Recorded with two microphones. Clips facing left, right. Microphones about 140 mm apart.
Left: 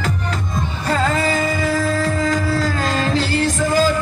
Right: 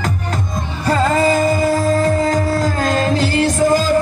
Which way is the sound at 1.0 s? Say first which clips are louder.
Right 7 dB; 45° right (ahead or behind).